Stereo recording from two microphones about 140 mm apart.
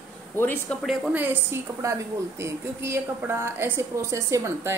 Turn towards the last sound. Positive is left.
turn(degrees=-20)  # may be behind; listen again after turning